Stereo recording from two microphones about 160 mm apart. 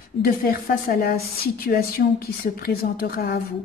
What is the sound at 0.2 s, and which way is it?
A woman's voice, 70° left (ahead or behind).